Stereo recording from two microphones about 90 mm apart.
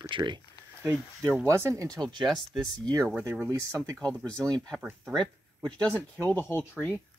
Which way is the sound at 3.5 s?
35° right (ahead or behind).